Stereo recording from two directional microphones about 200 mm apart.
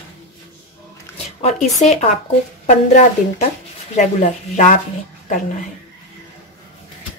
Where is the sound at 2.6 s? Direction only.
35° left (ahead or behind).